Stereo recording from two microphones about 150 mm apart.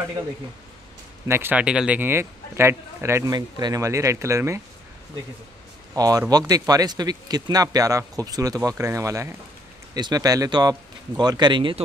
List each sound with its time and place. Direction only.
1.2 s speech: 15° right (ahead or behind)
3.3 s speech: 30° right (ahead or behind)
5.9 s speech: 25° right (ahead or behind)